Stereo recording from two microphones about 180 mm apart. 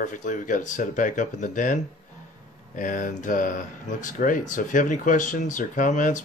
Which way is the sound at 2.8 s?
45° left (ahead or behind).